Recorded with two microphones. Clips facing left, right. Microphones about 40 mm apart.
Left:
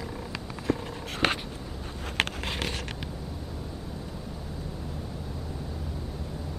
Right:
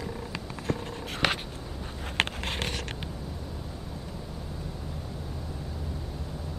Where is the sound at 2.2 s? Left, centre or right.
Right.